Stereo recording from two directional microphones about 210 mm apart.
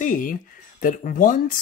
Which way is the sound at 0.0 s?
40° left (ahead or behind).